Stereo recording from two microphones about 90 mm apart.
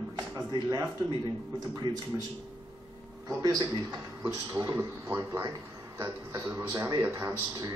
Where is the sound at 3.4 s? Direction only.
55° right (ahead or behind).